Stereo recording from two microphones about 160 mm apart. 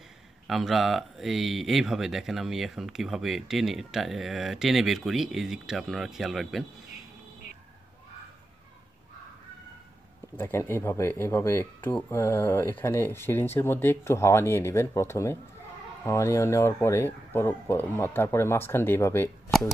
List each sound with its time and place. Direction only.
0.5 s speech: centre (ahead or behind)
10.3 s speech: 15° left (ahead or behind)